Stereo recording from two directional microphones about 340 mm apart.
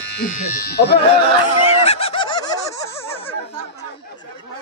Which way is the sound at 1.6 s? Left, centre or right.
Centre.